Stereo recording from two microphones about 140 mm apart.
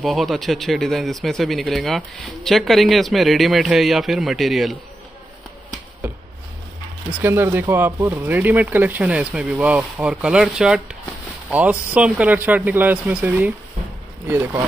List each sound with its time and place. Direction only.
0.0 s speech: centre (ahead or behind)
7.1 s speech: 15° right (ahead or behind)
11.9 s speech: 10° right (ahead or behind)